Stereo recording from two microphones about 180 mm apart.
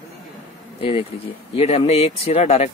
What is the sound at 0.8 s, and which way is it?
Speech, 30° left (ahead or behind).